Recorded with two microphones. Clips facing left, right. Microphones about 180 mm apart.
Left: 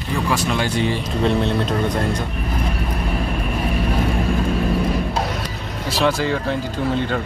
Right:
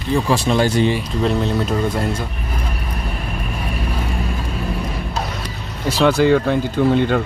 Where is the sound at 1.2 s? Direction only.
Centre (ahead or behind).